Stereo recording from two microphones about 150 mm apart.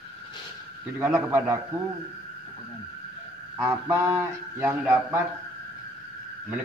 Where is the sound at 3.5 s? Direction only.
20° right (ahead or behind).